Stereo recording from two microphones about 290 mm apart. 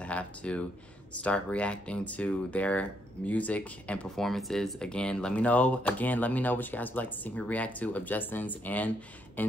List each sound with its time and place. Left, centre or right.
0.0 s speech: centre